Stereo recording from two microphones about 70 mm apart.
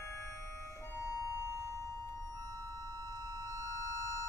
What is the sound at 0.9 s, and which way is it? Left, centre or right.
Siren, left.